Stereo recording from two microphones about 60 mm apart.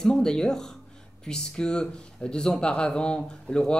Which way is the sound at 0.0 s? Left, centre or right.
Centre.